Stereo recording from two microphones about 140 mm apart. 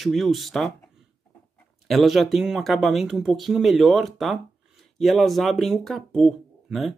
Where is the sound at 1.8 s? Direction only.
Centre (ahead or behind).